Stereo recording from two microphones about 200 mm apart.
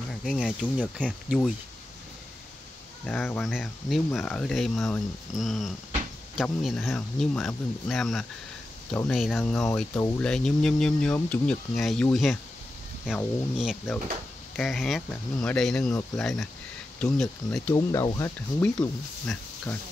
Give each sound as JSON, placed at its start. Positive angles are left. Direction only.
{"t": 0.2, "sound": "speech", "side_deg": 5}
{"t": 3.1, "sound": "speech", "side_deg": 5}
{"t": 13.6, "sound": "speech", "side_deg": -5}
{"t": 17.7, "sound": "speech", "side_deg": 20}
{"t": 18.6, "sound": "speech", "side_deg": 5}